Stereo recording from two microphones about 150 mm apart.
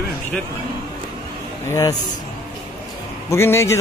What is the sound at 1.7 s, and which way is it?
Speech, 20° left (ahead or behind).